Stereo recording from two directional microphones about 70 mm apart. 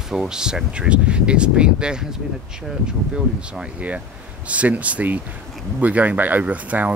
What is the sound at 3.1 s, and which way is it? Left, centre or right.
Speech, centre.